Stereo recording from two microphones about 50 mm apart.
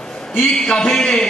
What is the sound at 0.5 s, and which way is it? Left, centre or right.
Speech, centre.